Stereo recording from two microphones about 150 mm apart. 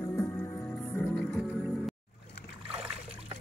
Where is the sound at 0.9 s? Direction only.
10° left (ahead or behind).